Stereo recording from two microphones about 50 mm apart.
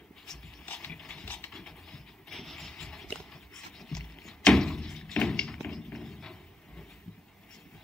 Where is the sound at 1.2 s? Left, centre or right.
Left.